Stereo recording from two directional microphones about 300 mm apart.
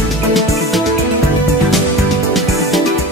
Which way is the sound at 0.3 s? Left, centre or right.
Centre.